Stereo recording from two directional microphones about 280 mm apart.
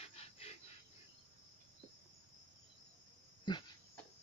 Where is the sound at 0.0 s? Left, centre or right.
Left.